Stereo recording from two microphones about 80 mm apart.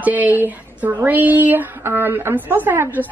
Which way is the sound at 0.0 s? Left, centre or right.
Right.